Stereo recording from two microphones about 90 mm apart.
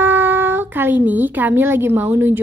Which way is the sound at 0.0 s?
20° right (ahead or behind).